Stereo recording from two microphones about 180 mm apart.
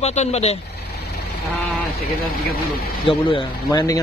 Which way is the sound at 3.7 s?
20° left (ahead or behind).